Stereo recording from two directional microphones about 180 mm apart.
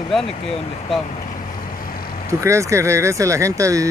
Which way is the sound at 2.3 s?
15° right (ahead or behind).